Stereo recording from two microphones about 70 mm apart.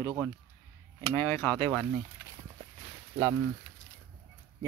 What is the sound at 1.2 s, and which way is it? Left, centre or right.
Speech, left.